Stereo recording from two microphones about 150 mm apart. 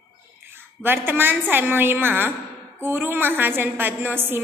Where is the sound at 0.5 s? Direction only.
15° right (ahead or behind).